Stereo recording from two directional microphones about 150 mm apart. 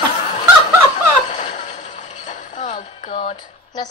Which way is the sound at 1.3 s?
50° left (ahead or behind).